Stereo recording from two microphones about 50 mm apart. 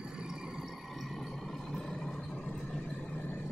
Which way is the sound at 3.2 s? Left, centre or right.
Left.